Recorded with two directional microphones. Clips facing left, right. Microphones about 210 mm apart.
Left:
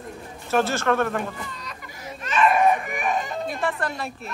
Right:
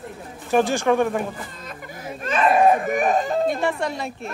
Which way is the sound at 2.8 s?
45° right (ahead or behind).